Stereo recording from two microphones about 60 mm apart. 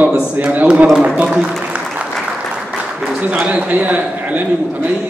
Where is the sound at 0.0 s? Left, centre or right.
Right.